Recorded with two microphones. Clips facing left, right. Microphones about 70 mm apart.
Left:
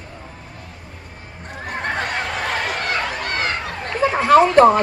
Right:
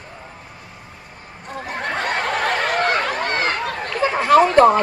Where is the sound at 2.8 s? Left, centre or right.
Right.